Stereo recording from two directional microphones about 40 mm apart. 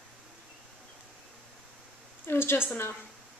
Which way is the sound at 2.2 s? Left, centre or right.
Left.